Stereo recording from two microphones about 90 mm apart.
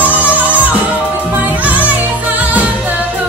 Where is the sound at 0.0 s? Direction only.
20° right (ahead or behind).